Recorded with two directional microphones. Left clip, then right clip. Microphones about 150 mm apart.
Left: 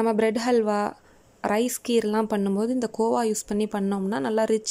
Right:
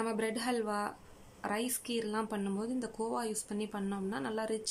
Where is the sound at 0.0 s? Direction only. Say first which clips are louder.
Left 12 dB; 50° left (ahead or behind).